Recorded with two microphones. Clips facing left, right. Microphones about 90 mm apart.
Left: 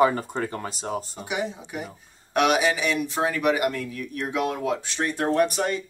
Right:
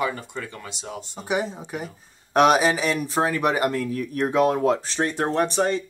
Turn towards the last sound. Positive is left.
turn(degrees=-30)  # may be behind; listen again after turning